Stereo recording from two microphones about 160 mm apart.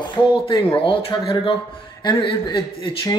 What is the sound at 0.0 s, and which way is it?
A man's voice, 30° left (ahead or behind).